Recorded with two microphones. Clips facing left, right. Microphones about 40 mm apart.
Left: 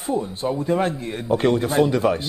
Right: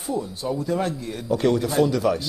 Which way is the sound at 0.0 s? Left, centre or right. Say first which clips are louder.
Left 3 dB; left.